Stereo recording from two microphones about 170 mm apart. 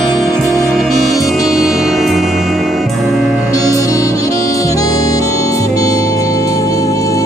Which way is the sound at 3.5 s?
20° left (ahead or behind).